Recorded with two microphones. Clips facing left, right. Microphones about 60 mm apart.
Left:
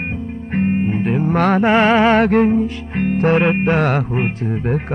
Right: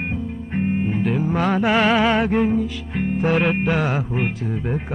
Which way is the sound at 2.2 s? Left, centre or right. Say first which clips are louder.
Left 5 dB; left.